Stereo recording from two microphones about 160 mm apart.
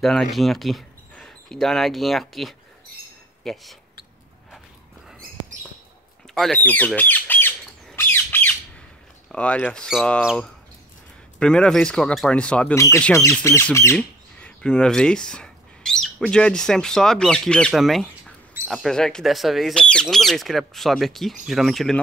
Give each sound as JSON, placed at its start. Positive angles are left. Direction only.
{"t": 0.0, "sound": "speech", "side_deg": 0}
{"t": 6.2, "sound": "squawk", "side_deg": 0}
{"t": 9.3, "sound": "speech", "side_deg": 5}
{"t": 11.3, "sound": "speech", "side_deg": 5}
{"t": 12.7, "sound": "speech", "side_deg": 20}
{"t": 13.9, "sound": "speech", "side_deg": 5}